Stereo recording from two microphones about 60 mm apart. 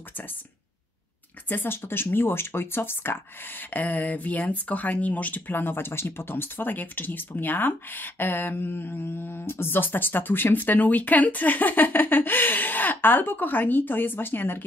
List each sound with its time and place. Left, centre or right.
1.5 s speech: left